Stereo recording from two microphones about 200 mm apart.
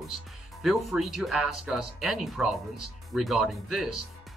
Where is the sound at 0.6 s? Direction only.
Centre (ahead or behind).